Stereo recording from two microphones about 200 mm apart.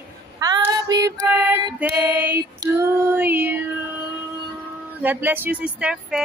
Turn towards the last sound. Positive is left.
turn(degrees=-5)  # may be behind; listen again after turning